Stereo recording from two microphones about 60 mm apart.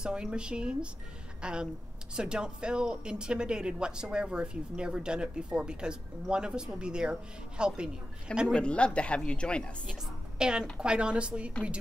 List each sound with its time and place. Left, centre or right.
0.0 s speech: centre
8.5 s speech: centre
10.4 s speech: centre